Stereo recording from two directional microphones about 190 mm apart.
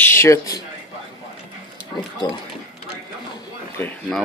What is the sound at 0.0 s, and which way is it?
Speech, 15° left (ahead or behind).